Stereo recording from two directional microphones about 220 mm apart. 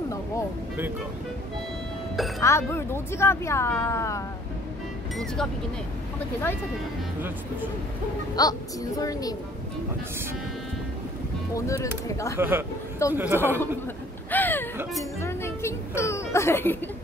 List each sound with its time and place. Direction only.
2.4 s speech: 10° left (ahead or behind)
5.1 s speech: centre (ahead or behind)
8.4 s speech: 15° left (ahead or behind)
11.5 s speech: 15° left (ahead or behind)
12.4 s speech: 10° right (ahead or behind)
14.3 s a sound: 10° left (ahead or behind)
15.1 s speech: 10° left (ahead or behind)